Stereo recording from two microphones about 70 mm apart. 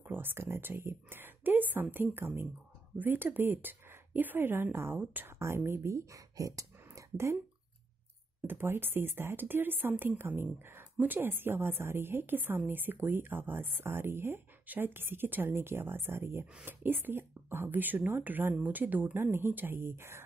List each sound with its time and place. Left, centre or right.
0.0 s a woman's voice: right
5.7 s speech: right
8.5 s a woman's voice: right